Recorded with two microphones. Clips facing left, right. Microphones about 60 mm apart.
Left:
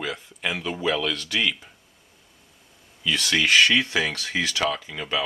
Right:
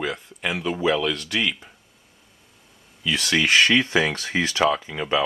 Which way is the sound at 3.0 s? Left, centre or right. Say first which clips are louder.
Right 1 dB; centre.